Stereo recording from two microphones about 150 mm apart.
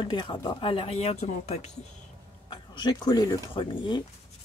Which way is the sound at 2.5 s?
30° left (ahead or behind).